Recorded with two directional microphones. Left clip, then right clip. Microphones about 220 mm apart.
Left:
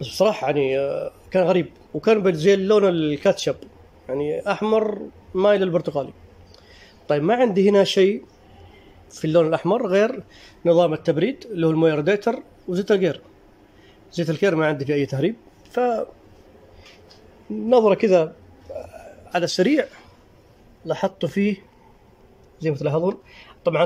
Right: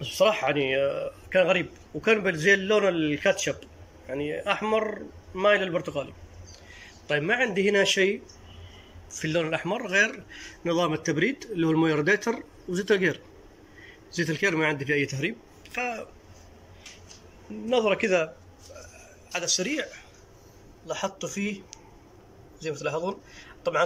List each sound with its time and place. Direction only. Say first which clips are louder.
0.0 s speech: left 3 dB; 20° left (ahead or behind)
9.2 s speech: left 9 dB; 20° left (ahead or behind)
15.1 s speech: left 7 dB; 30° left (ahead or behind)
17.6 s speech: left 8 dB; 20° left (ahead or behind)
19.0 s speech: left 5 dB; 30° left (ahead or behind)
22.7 s speech: left 7 dB; 20° left (ahead or behind)